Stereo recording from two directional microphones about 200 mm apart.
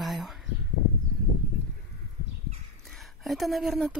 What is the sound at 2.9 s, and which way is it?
Speech, centre (ahead or behind).